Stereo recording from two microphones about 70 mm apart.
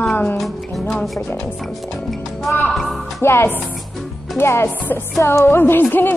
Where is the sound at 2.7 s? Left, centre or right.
Centre.